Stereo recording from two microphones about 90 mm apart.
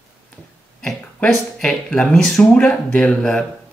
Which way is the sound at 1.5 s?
10° left (ahead or behind).